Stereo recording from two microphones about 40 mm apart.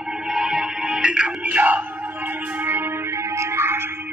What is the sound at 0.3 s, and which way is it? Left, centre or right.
Music, centre.